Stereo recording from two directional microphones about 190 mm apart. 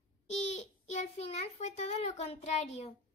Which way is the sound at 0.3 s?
35° left (ahead or behind).